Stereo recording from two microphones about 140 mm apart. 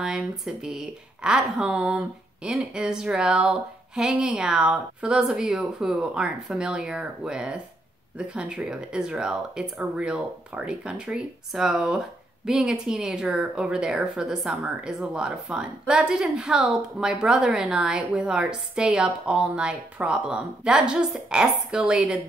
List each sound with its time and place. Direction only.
0.0 s speech: 5° right (ahead or behind)